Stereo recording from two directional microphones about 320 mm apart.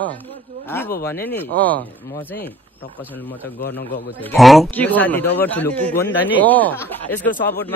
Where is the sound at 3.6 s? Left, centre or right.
Left.